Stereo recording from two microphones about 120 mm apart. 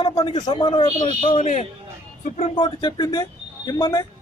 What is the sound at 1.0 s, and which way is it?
Speech, 50° left (ahead or behind).